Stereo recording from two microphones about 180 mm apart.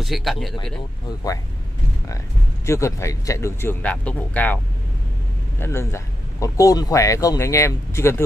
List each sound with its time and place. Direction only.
0.0 s speech: centre (ahead or behind)
2.6 s speech: 15° left (ahead or behind)
5.6 s speech: 15° left (ahead or behind)